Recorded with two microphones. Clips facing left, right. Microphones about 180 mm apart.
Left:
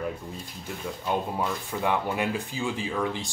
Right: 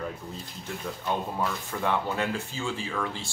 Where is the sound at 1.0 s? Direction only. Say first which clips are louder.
Left 2 dB; 15° left (ahead or behind).